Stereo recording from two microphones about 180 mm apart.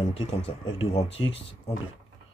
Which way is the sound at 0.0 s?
35° left (ahead or behind).